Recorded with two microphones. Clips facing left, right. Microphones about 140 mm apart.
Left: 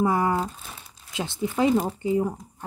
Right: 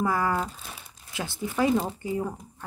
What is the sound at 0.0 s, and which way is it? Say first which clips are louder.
Speech: left 3 dB; 25° left (ahead or behind).